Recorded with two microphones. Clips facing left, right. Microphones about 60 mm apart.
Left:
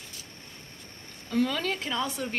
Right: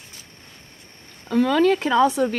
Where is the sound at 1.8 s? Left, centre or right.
Right.